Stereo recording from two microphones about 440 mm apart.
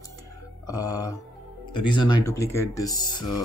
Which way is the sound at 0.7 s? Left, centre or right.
Centre.